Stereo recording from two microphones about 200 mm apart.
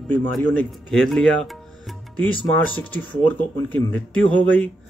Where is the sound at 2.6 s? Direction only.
5° left (ahead or behind).